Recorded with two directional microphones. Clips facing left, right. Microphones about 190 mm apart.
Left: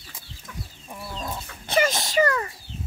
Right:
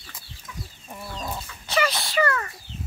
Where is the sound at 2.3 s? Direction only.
15° left (ahead or behind).